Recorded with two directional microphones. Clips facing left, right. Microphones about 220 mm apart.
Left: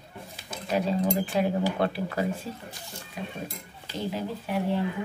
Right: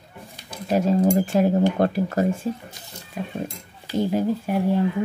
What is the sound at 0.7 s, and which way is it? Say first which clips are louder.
Speech: right 7 dB; 45° right (ahead or behind).